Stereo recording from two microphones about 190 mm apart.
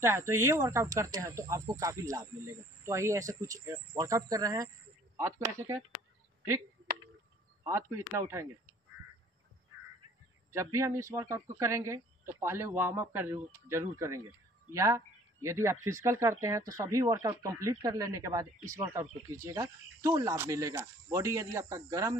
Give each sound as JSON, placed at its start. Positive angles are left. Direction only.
{"t": 0.3, "sound": "speech", "side_deg": -15}
{"t": 7.6, "sound": "speech", "side_deg": -15}
{"t": 10.5, "sound": "speech", "side_deg": -15}